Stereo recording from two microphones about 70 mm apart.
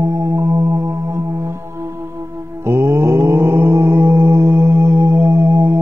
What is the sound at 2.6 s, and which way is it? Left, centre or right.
Mantra, right.